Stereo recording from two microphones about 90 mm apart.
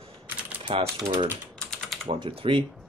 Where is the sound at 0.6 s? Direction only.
85° right.